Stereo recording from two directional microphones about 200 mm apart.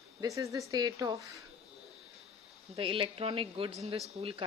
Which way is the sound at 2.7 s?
25° right (ahead or behind).